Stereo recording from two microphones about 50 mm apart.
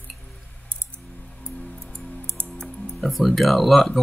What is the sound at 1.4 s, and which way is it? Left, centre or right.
Music, left.